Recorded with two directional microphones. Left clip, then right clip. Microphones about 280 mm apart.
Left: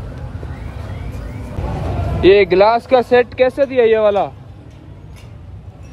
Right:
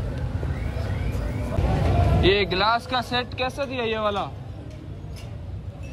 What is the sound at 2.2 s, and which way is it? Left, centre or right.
Speech, left.